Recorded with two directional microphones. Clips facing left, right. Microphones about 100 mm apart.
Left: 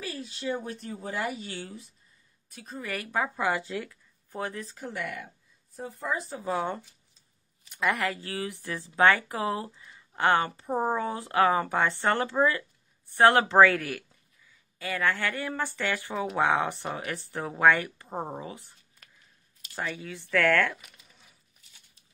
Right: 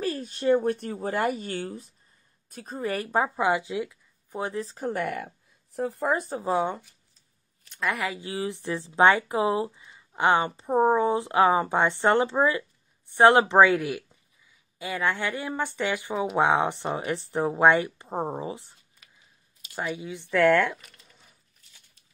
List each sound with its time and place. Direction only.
0.0 s speech: 45° right (ahead or behind); by 4.6 s 20° right (ahead or behind)
4.6 s speech: 40° right (ahead or behind)
6.3 s speech: 30° right (ahead or behind)
6.6 s speech: 15° right (ahead or behind)
7.6 s a woman's voice: 5° left (ahead or behind)
8.0 s speech: 15° right (ahead or behind)
20.7 s a sound: 5° left (ahead or behind)